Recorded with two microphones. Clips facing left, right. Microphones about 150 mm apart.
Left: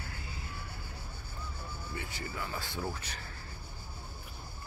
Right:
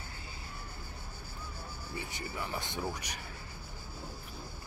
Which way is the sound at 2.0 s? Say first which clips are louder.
Right 1 dB; 20° right (ahead or behind).